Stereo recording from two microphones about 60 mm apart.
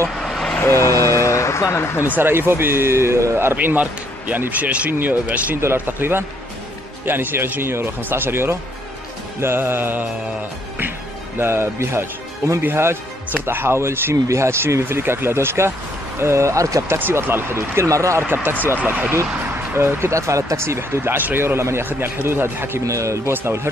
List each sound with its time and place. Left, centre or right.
0.2 s vehicle: centre
1.0 s a sound: left
2.1 s speech: right
3.5 s speech: right
5.6 s speech: right
11.3 s speech: right
16.9 s speech: right
18.2 s speech: right
19.7 s speech: right
21.5 s speech: right
22.8 s speech: right
23.3 s speech: right